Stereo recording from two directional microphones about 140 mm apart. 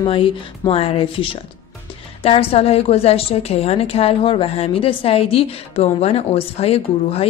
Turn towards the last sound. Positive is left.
turn(degrees=45)  # may be behind; listen again after turning